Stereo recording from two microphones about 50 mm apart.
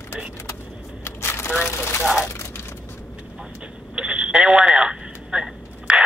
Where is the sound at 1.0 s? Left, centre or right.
Left.